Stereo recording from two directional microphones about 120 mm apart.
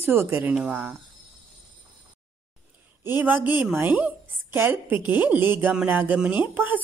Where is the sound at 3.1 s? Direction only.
15° right (ahead or behind).